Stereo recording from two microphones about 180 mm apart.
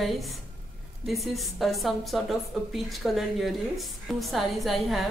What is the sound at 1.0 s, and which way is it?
A woman's voice, centre (ahead or behind).